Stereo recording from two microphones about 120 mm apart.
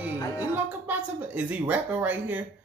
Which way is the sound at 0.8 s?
10° right (ahead or behind).